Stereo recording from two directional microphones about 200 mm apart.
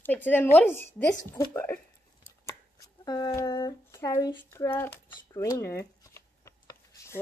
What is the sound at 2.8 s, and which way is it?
A woman's voice, 15° left (ahead or behind).